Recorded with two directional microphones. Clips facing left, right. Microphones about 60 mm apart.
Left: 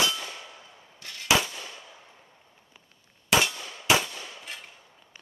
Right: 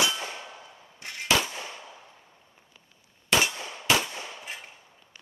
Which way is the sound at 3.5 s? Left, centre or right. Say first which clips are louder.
Right 2 dB; right.